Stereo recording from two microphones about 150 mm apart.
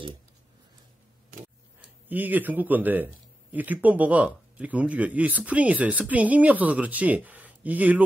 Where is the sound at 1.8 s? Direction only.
10° right (ahead or behind).